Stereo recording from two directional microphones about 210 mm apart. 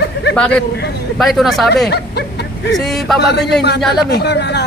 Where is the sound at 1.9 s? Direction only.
50° left (ahead or behind).